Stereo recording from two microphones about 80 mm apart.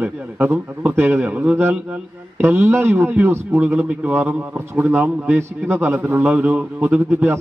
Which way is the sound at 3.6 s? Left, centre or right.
Centre.